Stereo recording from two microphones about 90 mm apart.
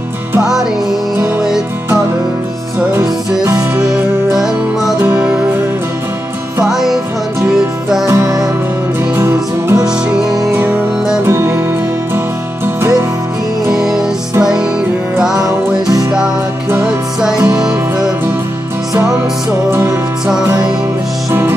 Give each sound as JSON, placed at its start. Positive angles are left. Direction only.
{"t": 0.4, "sound": "music", "side_deg": -5}
{"t": 6.6, "sound": "music", "side_deg": -5}
{"t": 8.1, "sound": "music", "side_deg": -40}
{"t": 11.2, "sound": "music", "side_deg": -30}
{"t": 13.7, "sound": "music", "side_deg": -5}
{"t": 15.1, "sound": "music", "side_deg": -5}
{"t": 15.4, "sound": "music", "side_deg": -45}
{"t": 16.8, "sound": "music", "side_deg": -5}
{"t": 17.4, "sound": "music", "side_deg": -45}
{"t": 19.7, "sound": "music", "side_deg": -25}
{"t": 21.3, "sound": "music", "side_deg": -30}